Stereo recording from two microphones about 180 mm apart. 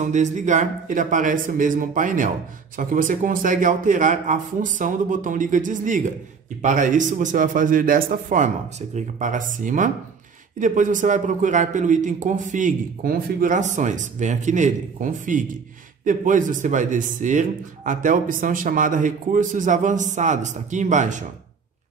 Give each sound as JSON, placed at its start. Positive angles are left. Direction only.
{"t": 0.0, "sound": "a man's voice", "side_deg": -40}